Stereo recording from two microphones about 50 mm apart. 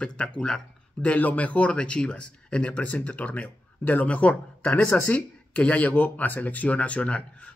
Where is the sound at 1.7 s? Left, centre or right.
Centre.